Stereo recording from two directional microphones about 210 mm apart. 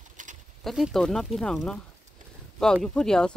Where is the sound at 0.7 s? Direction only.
Centre (ahead or behind).